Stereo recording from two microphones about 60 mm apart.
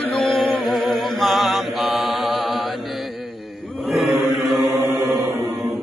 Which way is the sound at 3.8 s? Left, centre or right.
Centre.